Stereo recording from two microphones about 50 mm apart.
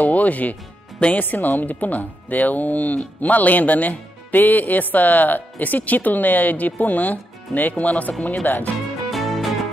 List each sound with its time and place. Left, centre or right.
0.0 s music: left
1.2 s speech: left
9.1 s music: centre